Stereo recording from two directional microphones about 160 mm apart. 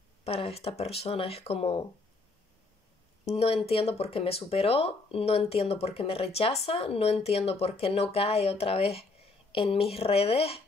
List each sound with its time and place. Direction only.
0.2 s speech: 40° left (ahead or behind)
3.3 s speech: 40° left (ahead or behind)